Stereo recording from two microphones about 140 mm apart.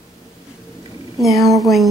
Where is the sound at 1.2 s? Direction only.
Centre (ahead or behind).